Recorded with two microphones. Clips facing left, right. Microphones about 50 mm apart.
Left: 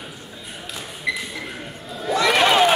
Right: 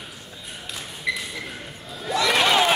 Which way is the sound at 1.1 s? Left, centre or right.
Centre.